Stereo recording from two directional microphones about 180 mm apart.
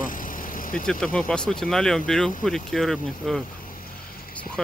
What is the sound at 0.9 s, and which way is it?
Speech, 5° left (ahead or behind).